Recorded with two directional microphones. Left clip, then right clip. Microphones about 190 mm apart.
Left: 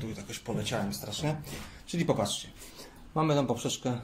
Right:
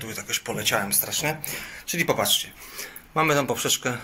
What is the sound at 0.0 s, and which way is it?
Speech, 5° left (ahead or behind).